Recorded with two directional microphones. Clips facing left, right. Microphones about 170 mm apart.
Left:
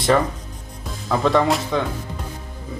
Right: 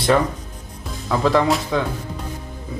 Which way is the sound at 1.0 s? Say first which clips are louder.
Even; centre (ahead or behind).